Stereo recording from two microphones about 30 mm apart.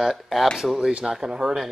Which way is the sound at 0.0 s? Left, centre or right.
Centre.